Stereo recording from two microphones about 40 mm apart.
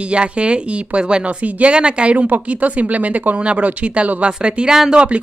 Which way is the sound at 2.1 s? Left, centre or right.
Right.